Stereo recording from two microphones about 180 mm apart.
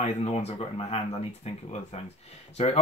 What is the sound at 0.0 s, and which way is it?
Speech, 35° left (ahead or behind).